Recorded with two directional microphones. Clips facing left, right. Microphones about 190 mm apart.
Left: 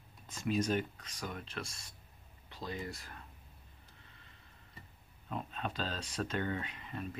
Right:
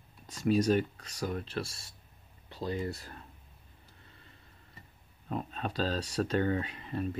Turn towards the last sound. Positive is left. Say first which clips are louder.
# right 7 dB
turn(degrees=-40)  # may be behind; listen again after turning